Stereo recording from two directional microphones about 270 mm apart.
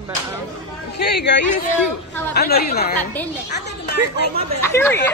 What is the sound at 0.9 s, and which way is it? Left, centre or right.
Speech, left.